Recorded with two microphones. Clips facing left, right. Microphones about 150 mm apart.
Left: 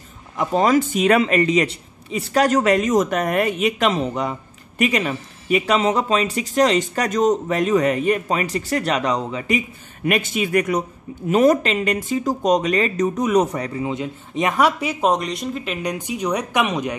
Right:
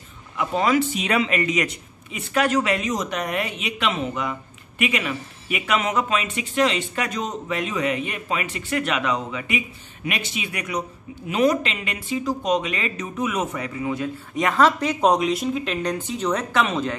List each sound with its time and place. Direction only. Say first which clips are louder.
0.4 s speech: left 3 dB; 40° left (ahead or behind)
10.0 s speech: left 8 dB; 45° left (ahead or behind)
13.8 s speech: even; 20° left (ahead or behind)